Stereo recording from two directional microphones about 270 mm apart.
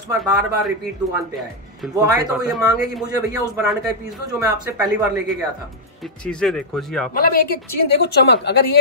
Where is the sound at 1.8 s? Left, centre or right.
Centre.